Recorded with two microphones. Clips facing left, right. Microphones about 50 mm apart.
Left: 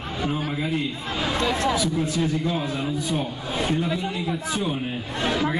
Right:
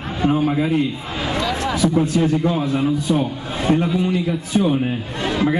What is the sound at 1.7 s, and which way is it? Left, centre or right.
A man's voice, right.